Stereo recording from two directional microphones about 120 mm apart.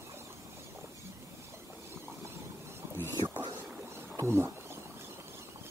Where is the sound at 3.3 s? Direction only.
40° right (ahead or behind).